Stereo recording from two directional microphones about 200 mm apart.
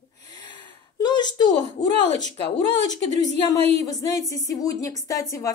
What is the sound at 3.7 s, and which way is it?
A woman's voice, 20° left (ahead or behind).